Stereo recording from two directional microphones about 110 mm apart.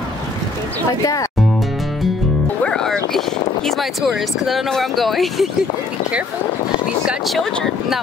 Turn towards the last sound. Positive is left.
turn(degrees=0)  # may be behind; listen again after turning